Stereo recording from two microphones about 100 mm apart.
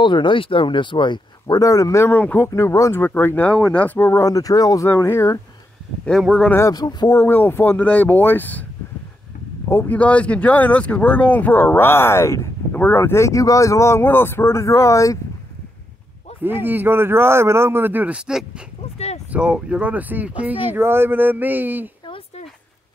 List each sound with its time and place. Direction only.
0.0 s speech: 55° left (ahead or behind)
1.5 s speech: 35° left (ahead or behind)
2.1 s speech: 20° left (ahead or behind); by 4.8 s 35° left (ahead or behind)
4.8 s speech: 25° left (ahead or behind)
6.7 s speech: 40° left (ahead or behind)
7.1 s speech: 25° left (ahead or behind)
9.7 s speech: 20° left (ahead or behind)
16.4 s speech: 20° right (ahead or behind)
22.0 s a sound: 65° left (ahead or behind)